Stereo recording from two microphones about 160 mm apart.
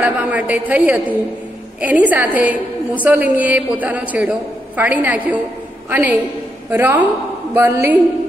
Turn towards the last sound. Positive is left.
turn(degrees=-15)  # may be behind; listen again after turning